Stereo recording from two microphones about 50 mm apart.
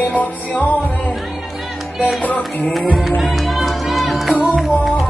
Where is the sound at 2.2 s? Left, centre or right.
Left.